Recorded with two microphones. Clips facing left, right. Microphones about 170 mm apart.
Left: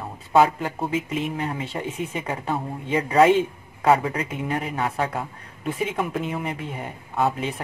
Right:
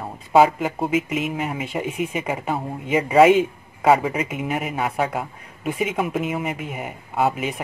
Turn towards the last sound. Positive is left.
turn(degrees=-10)  # may be behind; listen again after turning